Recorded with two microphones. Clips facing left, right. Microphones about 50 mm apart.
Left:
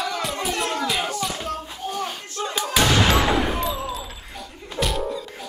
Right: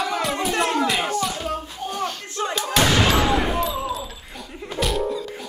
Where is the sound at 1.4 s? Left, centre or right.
Centre.